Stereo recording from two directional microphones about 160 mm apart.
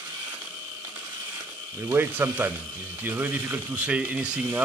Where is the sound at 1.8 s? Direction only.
15° right (ahead or behind).